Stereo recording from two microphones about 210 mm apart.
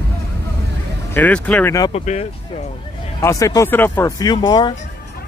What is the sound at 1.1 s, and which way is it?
Speech, 5° left (ahead or behind).